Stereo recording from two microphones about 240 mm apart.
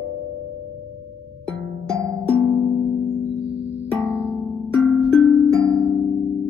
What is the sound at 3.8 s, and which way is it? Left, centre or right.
Music, centre.